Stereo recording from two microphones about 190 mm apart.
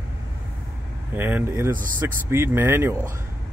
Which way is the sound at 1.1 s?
10° right (ahead or behind).